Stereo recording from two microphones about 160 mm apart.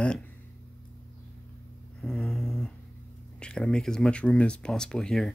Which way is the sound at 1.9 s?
5° left (ahead or behind).